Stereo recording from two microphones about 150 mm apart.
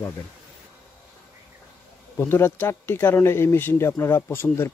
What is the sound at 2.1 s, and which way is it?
Speech, 15° left (ahead or behind).